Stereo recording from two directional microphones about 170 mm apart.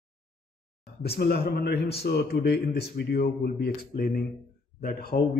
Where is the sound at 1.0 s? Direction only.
70° left (ahead or behind).